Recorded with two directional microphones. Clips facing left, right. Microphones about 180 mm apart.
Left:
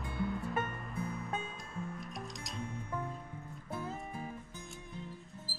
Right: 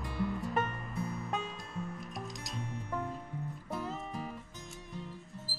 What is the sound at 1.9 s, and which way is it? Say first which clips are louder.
Music: right 1 dB; centre (ahead or behind).